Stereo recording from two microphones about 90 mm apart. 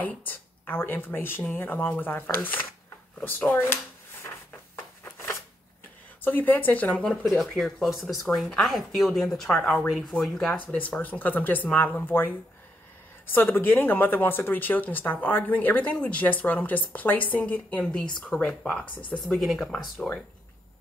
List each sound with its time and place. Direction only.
0.0 s speech: 20° left (ahead or behind)
5.0 s shuffling cards: 30° left (ahead or behind)
6.2 s speech: 20° left (ahead or behind)
7.1 s speech: centre (ahead or behind)
19.2 s speech: centre (ahead or behind)